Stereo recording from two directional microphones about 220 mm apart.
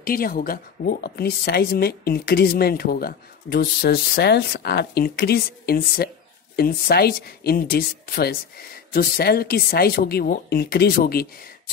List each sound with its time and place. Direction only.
0.0 s a woman's voice: 40° left (ahead or behind)